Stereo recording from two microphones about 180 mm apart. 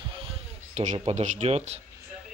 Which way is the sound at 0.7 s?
40° right (ahead or behind).